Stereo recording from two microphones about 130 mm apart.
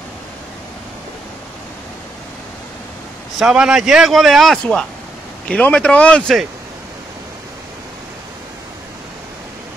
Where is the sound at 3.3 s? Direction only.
5° right (ahead or behind).